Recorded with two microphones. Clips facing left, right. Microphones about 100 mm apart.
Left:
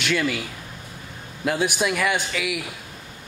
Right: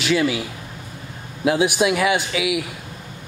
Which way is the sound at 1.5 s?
5° right (ahead or behind).